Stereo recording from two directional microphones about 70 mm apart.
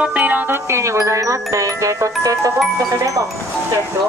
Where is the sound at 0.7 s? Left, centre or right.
Right.